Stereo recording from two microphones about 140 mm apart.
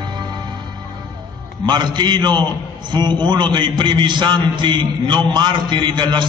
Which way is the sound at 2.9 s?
35° right (ahead or behind).